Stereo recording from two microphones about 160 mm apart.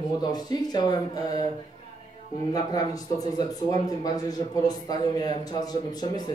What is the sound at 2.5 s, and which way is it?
Speech, 25° left (ahead or behind).